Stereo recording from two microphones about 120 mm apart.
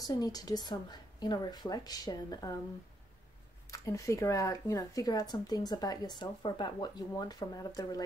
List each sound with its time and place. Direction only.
0.0 s a woman's voice: 30° left (ahead or behind)
3.7 s a woman's voice: 25° left (ahead or behind)